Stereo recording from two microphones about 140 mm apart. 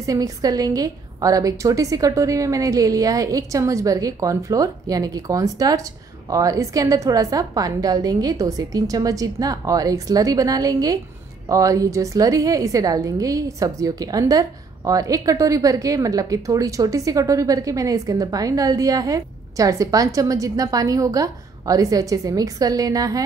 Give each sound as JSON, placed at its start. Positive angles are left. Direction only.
{"t": 0.0, "sound": "speech", "side_deg": -25}